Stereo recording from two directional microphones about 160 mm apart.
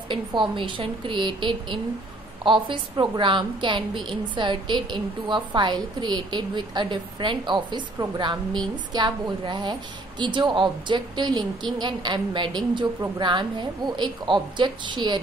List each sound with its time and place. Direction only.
0.1 s a woman's voice: 30° right (ahead or behind)